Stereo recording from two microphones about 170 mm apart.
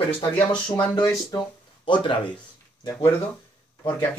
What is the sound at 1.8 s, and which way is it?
Speech, 30° left (ahead or behind).